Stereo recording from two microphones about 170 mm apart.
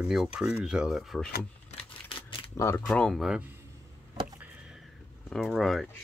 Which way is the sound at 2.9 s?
5° left (ahead or behind).